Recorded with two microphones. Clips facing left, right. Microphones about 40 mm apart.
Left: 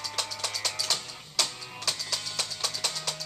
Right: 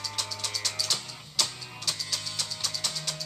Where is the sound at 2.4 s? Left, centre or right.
Left.